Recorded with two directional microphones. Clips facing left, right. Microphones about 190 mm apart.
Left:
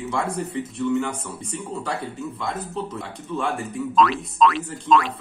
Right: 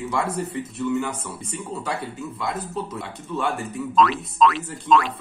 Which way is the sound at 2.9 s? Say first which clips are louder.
Even; centre (ahead or behind).